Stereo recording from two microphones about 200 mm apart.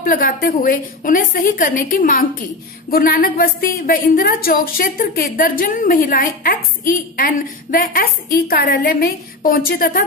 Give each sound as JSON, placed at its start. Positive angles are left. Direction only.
{"t": 0.0, "sound": "a woman's voice", "side_deg": 45}